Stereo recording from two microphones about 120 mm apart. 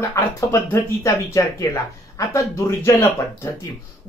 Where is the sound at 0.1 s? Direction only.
25° left (ahead or behind).